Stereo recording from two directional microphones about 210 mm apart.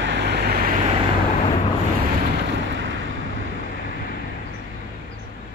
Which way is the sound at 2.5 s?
60° right (ahead or behind).